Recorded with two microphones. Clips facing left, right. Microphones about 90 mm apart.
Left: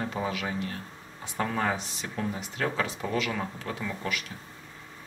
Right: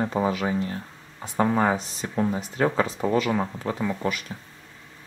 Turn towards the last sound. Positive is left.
turn(degrees=-35)  # may be behind; listen again after turning